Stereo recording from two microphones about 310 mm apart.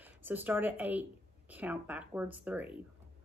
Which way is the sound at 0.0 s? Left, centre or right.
Centre.